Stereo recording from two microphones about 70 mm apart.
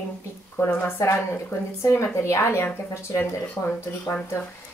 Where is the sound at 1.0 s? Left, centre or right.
Left.